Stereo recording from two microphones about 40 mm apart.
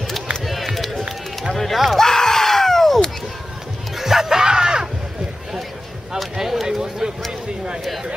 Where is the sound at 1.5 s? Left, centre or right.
Centre.